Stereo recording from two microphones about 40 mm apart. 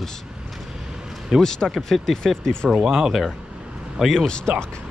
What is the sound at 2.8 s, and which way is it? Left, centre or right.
Speech, centre.